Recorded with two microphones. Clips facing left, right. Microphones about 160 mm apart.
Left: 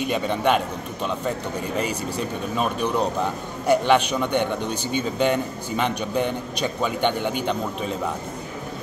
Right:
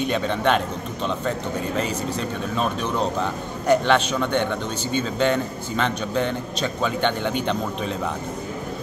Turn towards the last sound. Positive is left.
turn(degrees=5)  # may be behind; listen again after turning